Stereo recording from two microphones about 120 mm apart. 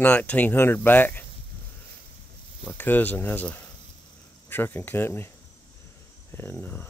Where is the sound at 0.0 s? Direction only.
15° left (ahead or behind).